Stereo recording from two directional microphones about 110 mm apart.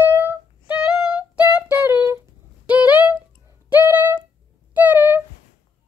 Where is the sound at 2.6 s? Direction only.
15° right (ahead or behind).